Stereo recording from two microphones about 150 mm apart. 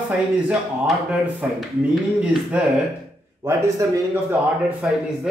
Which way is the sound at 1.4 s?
10° right (ahead or behind).